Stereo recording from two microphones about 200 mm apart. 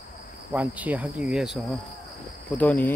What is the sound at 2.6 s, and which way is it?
Cricket, 5° left (ahead or behind).